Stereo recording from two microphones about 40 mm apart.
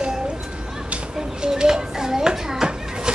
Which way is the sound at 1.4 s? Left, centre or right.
Centre.